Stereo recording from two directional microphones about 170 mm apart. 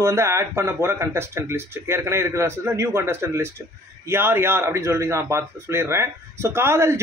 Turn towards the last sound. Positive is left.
turn(degrees=-15)  # may be behind; listen again after turning